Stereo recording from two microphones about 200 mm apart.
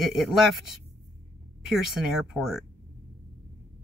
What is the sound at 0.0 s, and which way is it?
Speech, centre (ahead or behind).